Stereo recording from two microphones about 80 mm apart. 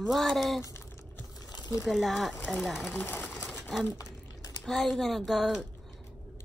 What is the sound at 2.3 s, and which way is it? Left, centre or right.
Speech, centre.